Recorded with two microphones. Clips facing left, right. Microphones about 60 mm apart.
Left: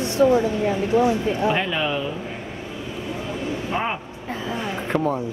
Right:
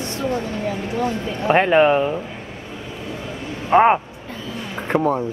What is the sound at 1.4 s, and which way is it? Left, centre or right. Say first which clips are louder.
Speech: right 12 dB; right.